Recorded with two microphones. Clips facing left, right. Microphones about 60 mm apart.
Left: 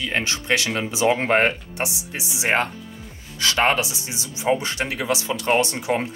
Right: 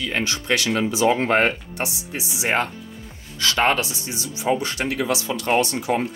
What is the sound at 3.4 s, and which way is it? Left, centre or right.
Speech, centre.